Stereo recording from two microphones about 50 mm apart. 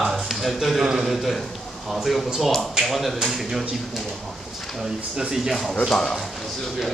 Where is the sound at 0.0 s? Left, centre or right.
Centre.